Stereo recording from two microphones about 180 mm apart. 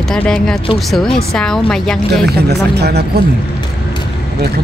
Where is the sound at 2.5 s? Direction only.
65° right (ahead or behind).